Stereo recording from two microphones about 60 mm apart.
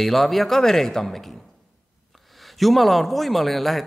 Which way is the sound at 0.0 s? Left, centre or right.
Centre.